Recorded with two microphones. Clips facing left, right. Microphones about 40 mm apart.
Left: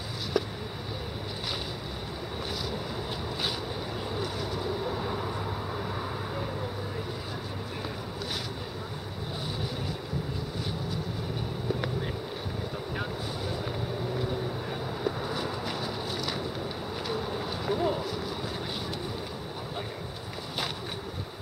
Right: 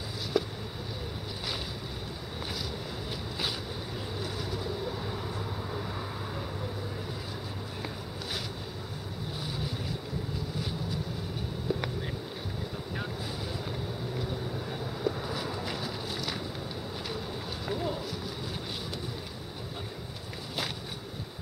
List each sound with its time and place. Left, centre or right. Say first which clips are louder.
4.2 s vehicle: left 1 dB; centre
4.6 s vehicle: left 5 dB; centre
14.7 s vehicle: right 2 dB; centre
17.1 s a sound: left 5 dB; centre